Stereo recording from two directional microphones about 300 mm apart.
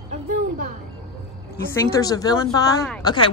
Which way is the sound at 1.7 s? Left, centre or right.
Centre.